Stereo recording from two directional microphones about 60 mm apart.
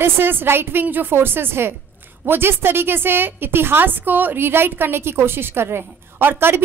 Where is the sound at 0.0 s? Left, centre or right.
Right.